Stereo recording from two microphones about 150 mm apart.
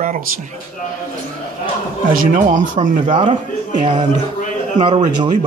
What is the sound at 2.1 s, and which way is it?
Speech, 60° right (ahead or behind).